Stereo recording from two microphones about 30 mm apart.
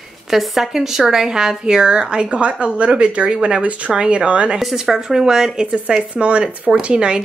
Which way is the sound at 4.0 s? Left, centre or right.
Right.